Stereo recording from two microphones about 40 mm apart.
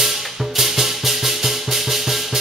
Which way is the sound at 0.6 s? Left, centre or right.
Centre.